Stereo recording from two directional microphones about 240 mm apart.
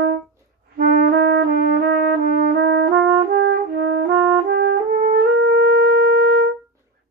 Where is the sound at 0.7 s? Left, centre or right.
Right.